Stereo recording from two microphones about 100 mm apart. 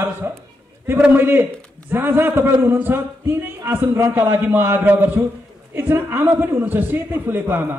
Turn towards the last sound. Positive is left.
turn(degrees=-20)  # may be behind; listen again after turning